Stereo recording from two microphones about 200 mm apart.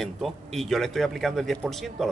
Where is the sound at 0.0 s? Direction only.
Centre (ahead or behind).